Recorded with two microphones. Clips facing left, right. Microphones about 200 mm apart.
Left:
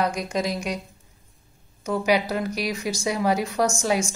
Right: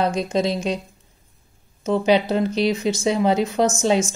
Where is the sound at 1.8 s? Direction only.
25° right (ahead or behind).